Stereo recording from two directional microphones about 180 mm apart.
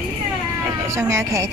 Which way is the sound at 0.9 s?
15° right (ahead or behind).